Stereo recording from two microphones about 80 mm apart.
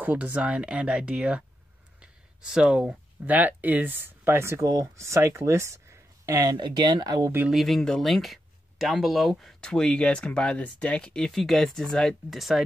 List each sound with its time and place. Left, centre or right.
0.0 s speech: centre
2.0 s a sound: centre
3.3 s speech: right
6.6 s speech: right
7.5 s speech: centre